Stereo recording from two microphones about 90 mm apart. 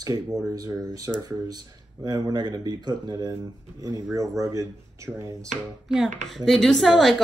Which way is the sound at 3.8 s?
40° right (ahead or behind).